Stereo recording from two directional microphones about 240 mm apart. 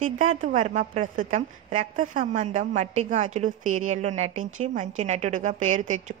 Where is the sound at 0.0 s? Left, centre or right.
Right.